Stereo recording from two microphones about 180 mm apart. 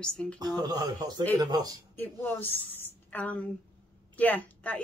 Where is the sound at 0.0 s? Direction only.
5° left (ahead or behind).